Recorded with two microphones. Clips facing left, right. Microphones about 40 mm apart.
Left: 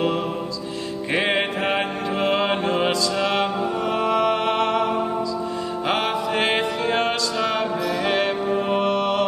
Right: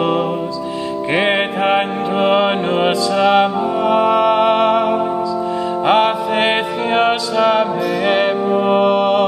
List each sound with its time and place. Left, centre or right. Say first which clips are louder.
1.1 s music: right 5 dB; right
3.2 s music: right 13 dB; centre
3.8 s music: right 8 dB; right
7.3 s music: right 8 dB; centre
8.5 s music: right 7 dB; right